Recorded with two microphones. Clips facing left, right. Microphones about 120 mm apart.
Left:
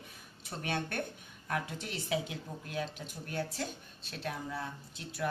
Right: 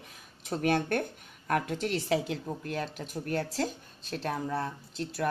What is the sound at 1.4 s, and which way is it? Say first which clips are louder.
Speech: right 8 dB; 65° right (ahead or behind).